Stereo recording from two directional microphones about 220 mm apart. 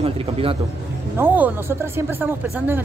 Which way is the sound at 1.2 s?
10° right (ahead or behind).